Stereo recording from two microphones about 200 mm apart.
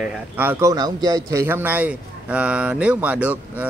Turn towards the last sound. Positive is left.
turn(degrees=-5)  # may be behind; listen again after turning